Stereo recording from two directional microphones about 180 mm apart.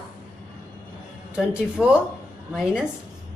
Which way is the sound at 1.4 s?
5° right (ahead or behind).